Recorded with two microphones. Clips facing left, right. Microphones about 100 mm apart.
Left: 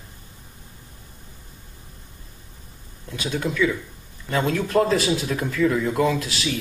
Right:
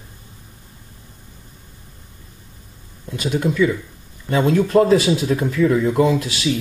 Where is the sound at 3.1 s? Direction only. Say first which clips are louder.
Right 5 dB; 10° right (ahead or behind).